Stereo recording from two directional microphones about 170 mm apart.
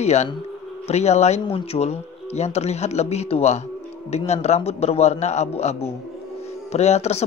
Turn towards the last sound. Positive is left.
turn(degrees=40)  # may be behind; listen again after turning